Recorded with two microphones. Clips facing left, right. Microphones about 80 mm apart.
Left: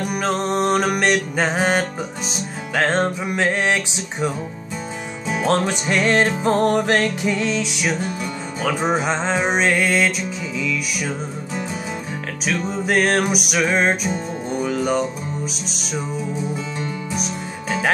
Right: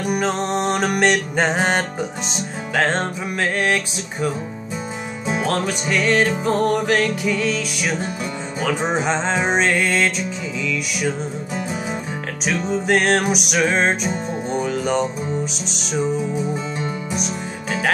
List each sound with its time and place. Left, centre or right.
0.1 s music: centre
5.5 s music: left
9.0 s music: centre
12.4 s music: centre